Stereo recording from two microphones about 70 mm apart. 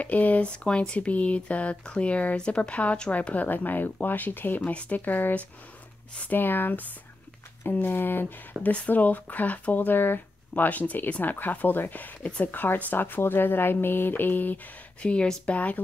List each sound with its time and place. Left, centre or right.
0.0 s speech: left
15.0 s speech: centre